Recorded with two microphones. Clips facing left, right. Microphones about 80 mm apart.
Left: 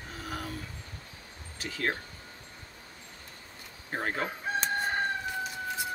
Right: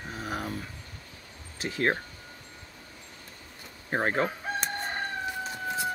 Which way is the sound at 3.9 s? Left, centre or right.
Right.